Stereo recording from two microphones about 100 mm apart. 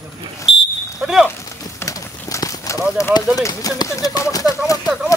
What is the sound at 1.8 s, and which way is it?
Clip-clop, 30° left (ahead or behind).